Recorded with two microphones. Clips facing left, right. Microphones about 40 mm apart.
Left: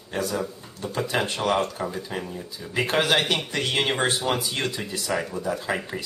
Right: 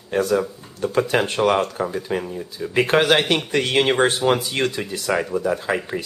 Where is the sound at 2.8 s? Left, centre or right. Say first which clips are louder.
Right 5 dB; right.